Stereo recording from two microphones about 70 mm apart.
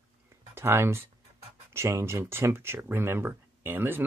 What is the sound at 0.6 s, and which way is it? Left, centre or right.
Speech, right.